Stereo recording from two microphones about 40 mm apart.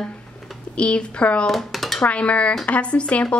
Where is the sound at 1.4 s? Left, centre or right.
Centre.